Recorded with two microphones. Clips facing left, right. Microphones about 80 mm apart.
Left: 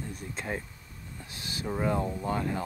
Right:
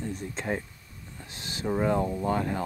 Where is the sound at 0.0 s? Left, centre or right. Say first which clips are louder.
Right 4 dB; right.